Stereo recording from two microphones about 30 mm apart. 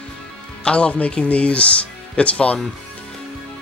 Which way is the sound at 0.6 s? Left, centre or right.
Left.